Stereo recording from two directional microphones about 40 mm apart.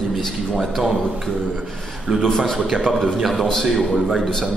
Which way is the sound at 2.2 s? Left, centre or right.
Centre.